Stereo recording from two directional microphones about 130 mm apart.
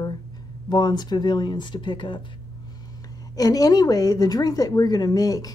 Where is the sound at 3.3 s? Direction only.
30° left (ahead or behind).